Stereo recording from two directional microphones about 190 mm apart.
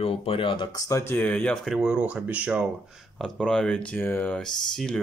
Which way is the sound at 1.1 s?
5° left (ahead or behind).